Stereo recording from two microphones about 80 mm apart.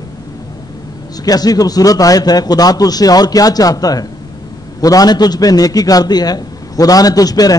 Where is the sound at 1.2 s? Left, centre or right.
Left.